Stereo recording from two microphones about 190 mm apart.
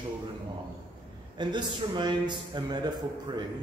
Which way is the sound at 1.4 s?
25° right (ahead or behind).